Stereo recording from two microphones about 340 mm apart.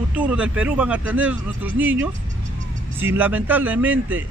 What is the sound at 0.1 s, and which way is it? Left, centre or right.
Speech, centre.